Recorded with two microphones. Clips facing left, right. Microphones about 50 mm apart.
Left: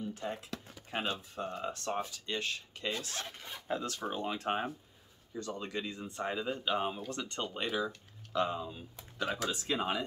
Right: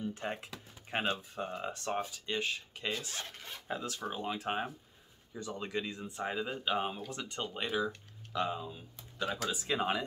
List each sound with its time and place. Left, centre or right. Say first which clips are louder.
0.1 s speech: even; right; by 3.3 s centre
3.4 s speech: left 1 dB; centre
3.7 s speech: left 2 dB; centre
9.7 s speech: right 1 dB; centre